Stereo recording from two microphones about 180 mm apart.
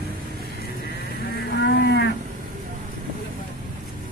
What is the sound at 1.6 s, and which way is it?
Cattle, 65° left (ahead or behind).